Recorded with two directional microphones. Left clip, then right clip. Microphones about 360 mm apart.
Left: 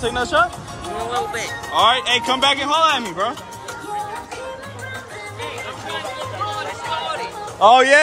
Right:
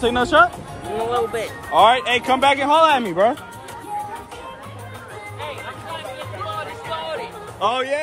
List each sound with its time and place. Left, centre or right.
0.0 s speech: centre
1.7 s speech: centre
7.6 s speech: centre